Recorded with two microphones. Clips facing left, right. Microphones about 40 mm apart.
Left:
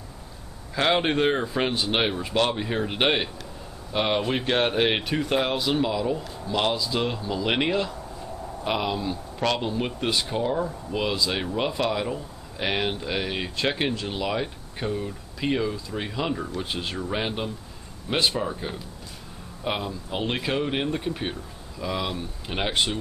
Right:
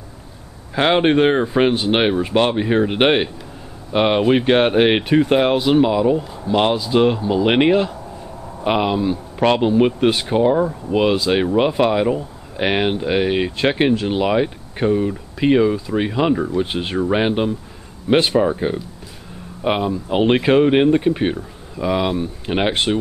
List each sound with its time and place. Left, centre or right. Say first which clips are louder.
0.7 s speech: right 8 dB; right